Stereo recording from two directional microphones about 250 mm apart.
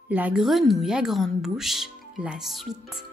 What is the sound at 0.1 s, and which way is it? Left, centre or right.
A woman's voice, centre.